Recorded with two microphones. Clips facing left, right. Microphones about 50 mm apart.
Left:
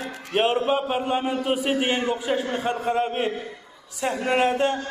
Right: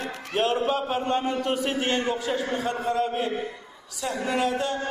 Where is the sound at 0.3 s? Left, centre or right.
Left.